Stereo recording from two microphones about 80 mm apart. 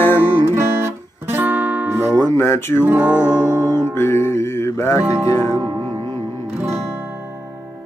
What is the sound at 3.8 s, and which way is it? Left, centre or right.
Music, left.